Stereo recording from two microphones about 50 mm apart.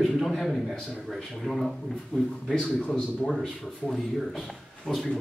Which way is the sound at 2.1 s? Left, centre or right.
Centre.